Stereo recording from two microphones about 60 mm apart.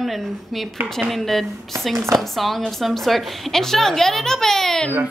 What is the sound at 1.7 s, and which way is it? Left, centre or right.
Speech, right.